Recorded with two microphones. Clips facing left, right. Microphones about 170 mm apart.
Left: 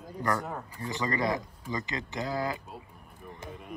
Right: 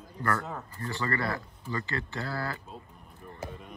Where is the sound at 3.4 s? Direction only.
Centre (ahead or behind).